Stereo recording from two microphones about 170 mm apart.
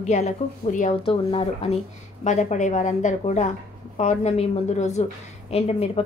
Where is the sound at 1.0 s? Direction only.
35° left (ahead or behind).